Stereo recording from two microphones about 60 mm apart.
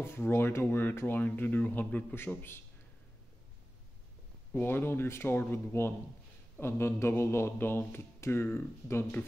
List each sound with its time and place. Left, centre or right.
0.0 s speech: left
2.1 s speech: left
4.6 s speech: left